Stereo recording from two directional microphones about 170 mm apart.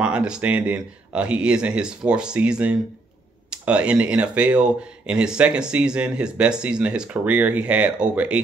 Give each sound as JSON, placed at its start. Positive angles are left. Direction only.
{"t": 0.0, "sound": "speech", "side_deg": -5}